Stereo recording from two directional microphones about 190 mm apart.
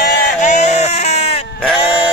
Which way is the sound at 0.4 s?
40° left (ahead or behind).